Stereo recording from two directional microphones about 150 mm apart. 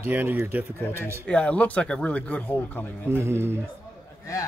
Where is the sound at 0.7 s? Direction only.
15° left (ahead or behind).